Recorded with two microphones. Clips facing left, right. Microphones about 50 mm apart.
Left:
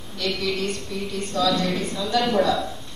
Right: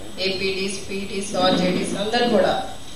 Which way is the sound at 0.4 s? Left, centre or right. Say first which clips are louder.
Right 1 dB; right.